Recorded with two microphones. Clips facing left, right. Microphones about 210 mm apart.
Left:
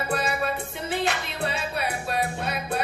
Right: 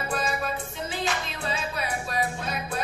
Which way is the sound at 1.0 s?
65° left (ahead or behind).